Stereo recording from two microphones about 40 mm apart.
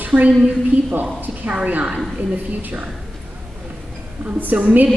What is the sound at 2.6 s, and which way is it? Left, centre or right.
Speech, right.